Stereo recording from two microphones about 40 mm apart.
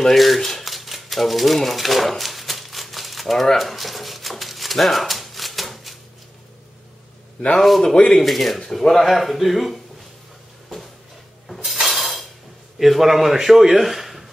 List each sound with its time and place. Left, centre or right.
0.0 s shuffling cards: centre
3.5 s a sound: centre
7.8 s speech: left
8.2 s speech: centre
11.4 s chink: centre
12.7 s a man's voice: centre